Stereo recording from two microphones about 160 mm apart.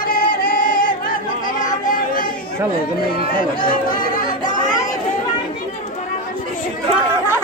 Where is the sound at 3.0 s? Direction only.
65° left (ahead or behind).